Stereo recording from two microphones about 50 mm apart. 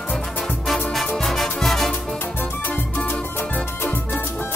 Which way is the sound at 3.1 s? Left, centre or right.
Left.